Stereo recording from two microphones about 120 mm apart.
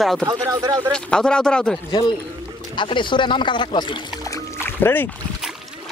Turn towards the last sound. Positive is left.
turn(degrees=15)  # may be behind; listen again after turning